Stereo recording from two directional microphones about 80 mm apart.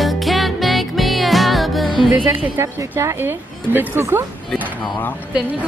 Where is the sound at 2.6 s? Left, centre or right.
Right.